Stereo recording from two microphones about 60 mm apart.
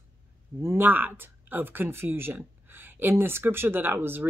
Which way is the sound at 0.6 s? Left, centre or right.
Right.